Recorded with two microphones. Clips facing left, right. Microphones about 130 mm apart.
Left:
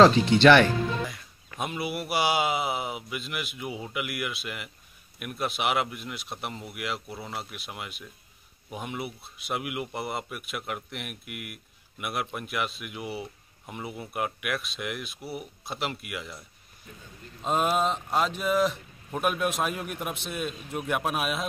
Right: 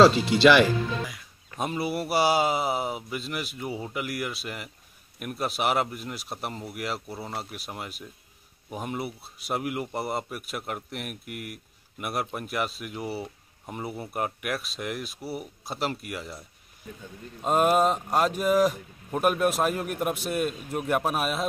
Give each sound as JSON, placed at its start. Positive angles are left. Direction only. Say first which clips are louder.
{"t": 0.0, "sound": "speech", "louder": "even", "side_deg": -5}
{"t": 1.6, "sound": "speech", "louder": "right 3 dB", "side_deg": -35}
{"t": 17.4, "sound": "speech", "louder": "right 3 dB", "side_deg": -5}
{"t": 17.6, "sound": "speech", "louder": "right 5 dB", "side_deg": -45}
{"t": 17.9, "sound": "speech", "louder": "right 2 dB", "side_deg": -5}
{"t": 18.3, "sound": "speech", "louder": "right 3 dB", "side_deg": -45}
{"t": 19.1, "sound": "speech", "louder": "right 4 dB", "side_deg": 0}
{"t": 19.7, "sound": "speech", "louder": "right 5 dB", "side_deg": -45}
{"t": 21.0, "sound": "speech", "louder": "right 2 dB", "side_deg": 0}